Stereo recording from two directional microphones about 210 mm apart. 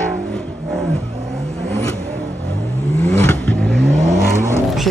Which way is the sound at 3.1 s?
5° left (ahead or behind).